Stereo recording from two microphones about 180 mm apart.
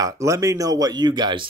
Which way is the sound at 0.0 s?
15° right (ahead or behind).